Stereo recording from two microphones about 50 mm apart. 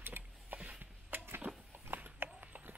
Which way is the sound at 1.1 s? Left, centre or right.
Right.